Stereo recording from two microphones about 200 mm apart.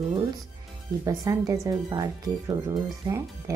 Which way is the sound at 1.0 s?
15° right (ahead or behind).